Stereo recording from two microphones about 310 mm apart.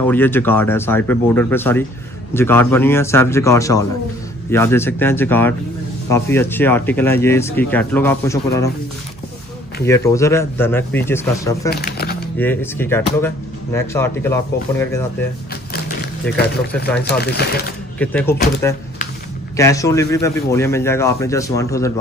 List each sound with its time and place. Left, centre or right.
0.0 s speech: centre
9.8 s speech: centre
11.7 s a sound: left
12.4 s speech: centre
17.0 s speech: left
17.9 s speech: centre